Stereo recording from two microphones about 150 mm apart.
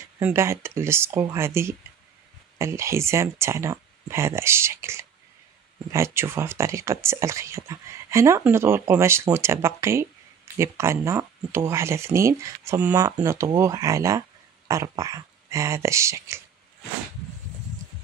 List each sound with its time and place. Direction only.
0.2 s speech: 15° right (ahead or behind)